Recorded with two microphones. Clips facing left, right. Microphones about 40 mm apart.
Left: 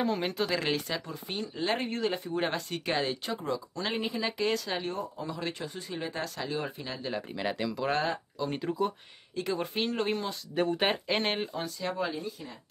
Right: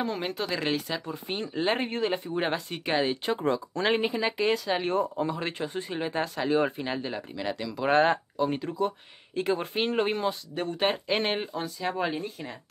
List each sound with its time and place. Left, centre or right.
0.0 s speech: centre
1.0 s speech: right
3.3 s speech: right
4.2 s speech: centre
4.8 s speech: right
5.2 s speech: right
7.3 s speech: centre
7.9 s speech: right
8.5 s speech: centre
9.3 s speech: right
10.5 s speech: centre
12.0 s speech: right